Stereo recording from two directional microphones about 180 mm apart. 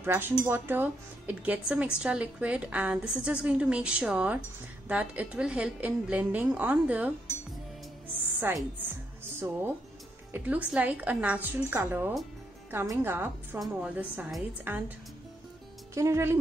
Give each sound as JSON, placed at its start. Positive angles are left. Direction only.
{"t": 0.0, "sound": "a woman's voice", "side_deg": -15}
{"t": 8.4, "sound": "a woman's voice", "side_deg": -10}
{"t": 10.3, "sound": "a woman's voice", "side_deg": -10}
{"t": 15.9, "sound": "speech", "side_deg": -15}